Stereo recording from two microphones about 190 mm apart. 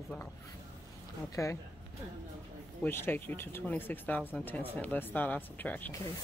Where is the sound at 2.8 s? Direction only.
10° left (ahead or behind).